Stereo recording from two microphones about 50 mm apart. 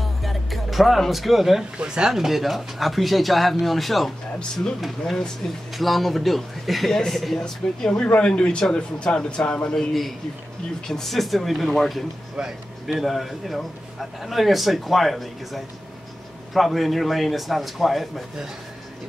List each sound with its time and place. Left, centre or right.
0.0 s music: centre
1.8 s a man's voice: centre
7.9 s a man's voice: left
9.8 s speech: centre
12.4 s speech: centre
12.8 s speech: centre